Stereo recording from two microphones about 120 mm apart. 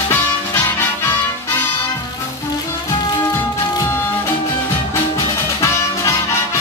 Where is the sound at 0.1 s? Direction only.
15° left (ahead or behind).